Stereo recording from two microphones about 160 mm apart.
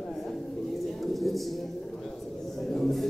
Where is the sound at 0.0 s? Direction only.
Centre (ahead or behind).